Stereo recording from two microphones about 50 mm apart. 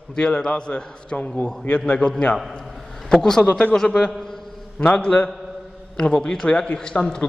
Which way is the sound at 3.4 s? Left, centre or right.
Left.